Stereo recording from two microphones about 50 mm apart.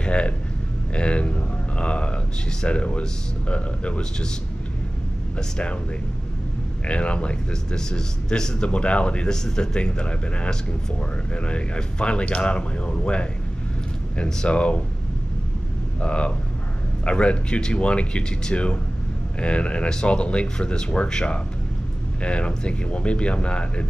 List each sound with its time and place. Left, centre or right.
0.0 s speech: left
6.9 s speech: left
16.0 s speech: left